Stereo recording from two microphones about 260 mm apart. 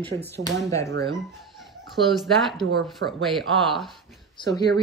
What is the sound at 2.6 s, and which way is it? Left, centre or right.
Speech, right.